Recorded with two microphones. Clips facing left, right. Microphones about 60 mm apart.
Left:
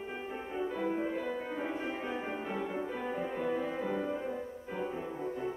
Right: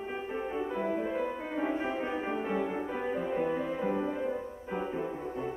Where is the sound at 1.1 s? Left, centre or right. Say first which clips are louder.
Right 3 dB; right.